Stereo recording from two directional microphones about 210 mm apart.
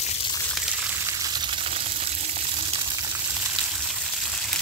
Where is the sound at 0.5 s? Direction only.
Centre (ahead or behind); by 3.1 s 25° right (ahead or behind).